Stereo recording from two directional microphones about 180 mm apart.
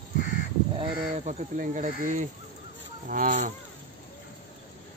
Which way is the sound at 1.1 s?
40° right (ahead or behind).